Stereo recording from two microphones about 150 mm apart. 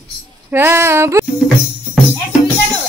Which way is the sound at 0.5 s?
15° right (ahead or behind).